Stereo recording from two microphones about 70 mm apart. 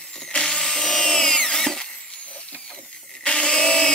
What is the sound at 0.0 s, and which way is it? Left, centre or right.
Drill, centre.